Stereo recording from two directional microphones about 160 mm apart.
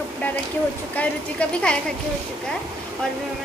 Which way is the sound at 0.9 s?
5° left (ahead or behind).